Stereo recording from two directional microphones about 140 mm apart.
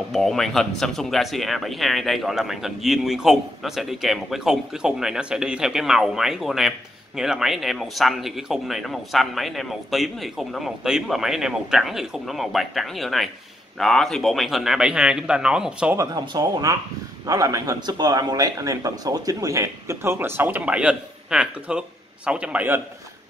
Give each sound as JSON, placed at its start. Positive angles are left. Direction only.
{"t": 0.1, "sound": "speech", "side_deg": 0}
{"t": 16.0, "sound": "a man's voice", "side_deg": -25}